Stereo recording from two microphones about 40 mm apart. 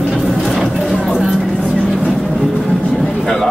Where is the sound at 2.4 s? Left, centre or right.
Centre.